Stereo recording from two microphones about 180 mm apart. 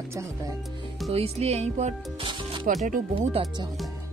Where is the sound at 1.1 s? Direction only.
35° right (ahead or behind).